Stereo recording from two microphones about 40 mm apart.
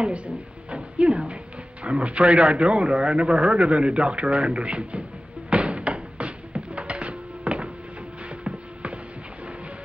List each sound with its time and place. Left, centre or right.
0.7 s speech: right
5.5 s music: right